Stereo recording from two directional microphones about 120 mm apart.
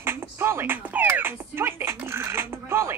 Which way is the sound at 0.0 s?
20° right (ahead or behind).